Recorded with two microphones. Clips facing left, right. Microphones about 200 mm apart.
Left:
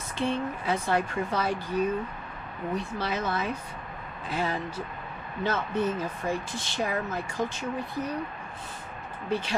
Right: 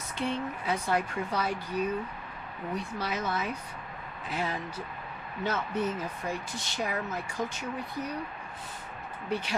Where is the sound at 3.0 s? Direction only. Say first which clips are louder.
Left 1 dB; 30° left (ahead or behind).